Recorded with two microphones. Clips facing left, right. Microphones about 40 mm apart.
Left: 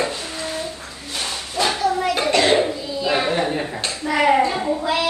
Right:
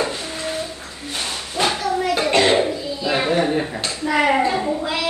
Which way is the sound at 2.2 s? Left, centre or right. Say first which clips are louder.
Even; right.